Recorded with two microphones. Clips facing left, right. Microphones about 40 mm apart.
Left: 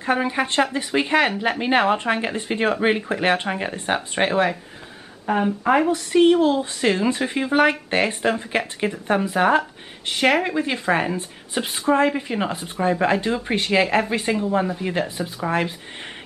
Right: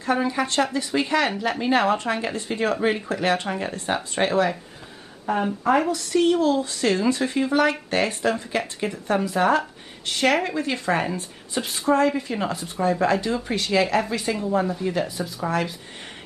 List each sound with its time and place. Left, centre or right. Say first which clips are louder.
0.0 s speech: left 1 dB; left